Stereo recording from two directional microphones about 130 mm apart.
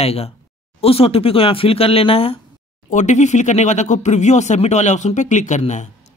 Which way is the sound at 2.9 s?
70° left (ahead or behind).